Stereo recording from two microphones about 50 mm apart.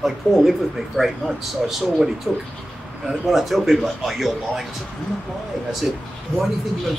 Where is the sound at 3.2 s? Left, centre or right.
Centre.